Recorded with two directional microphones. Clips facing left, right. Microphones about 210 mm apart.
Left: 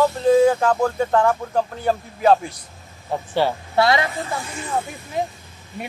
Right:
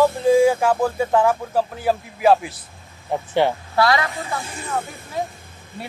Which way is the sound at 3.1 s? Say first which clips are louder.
Right 1 dB; 15° right (ahead or behind).